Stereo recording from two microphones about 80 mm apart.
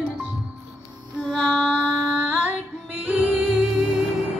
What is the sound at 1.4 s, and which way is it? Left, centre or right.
Music, centre.